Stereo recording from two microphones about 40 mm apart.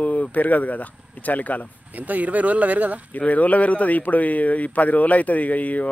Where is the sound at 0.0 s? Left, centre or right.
Left.